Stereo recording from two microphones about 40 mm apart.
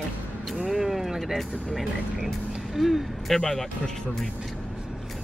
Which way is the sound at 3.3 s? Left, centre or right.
Centre.